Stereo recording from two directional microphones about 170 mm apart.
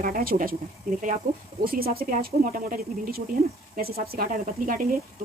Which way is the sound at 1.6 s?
60° right (ahead or behind).